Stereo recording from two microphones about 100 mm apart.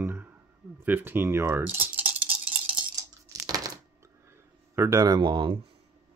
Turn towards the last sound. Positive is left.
turn(degrees=-55)  # may be behind; listen again after turning